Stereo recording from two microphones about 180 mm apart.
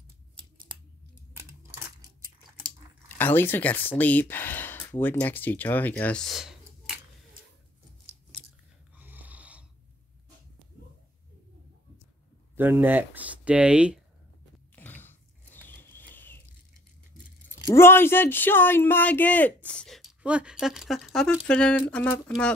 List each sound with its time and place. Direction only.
1.3 s a sound: 15° right (ahead or behind)
3.2 s speech: 10° left (ahead or behind)
8.9 s snoring: 10° right (ahead or behind)
12.5 s speech: 10° right (ahead or behind)
14.8 s a sound: 10° left (ahead or behind)
17.5 s speech: 15° left (ahead or behind)